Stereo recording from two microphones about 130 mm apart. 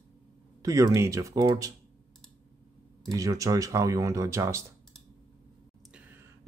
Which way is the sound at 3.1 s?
25° right (ahead or behind).